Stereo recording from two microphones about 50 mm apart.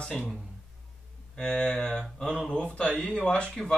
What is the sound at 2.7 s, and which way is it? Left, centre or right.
Speech, left.